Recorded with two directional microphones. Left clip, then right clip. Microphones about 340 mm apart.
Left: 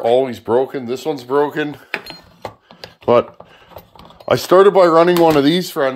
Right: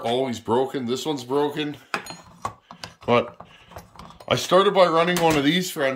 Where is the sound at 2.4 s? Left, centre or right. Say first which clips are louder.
Left 1 dB; centre.